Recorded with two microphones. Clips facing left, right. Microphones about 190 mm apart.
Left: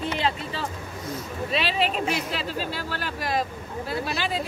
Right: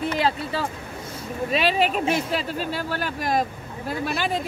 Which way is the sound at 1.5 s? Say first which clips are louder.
Right 4 dB; 45° right (ahead or behind).